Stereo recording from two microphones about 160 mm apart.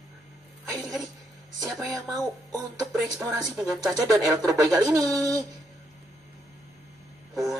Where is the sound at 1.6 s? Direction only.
Centre (ahead or behind).